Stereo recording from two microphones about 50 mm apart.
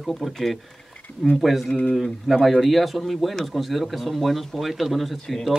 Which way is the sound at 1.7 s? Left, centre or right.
Centre.